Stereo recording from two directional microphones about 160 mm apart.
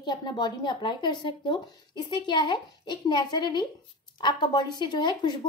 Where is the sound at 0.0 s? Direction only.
25° left (ahead or behind).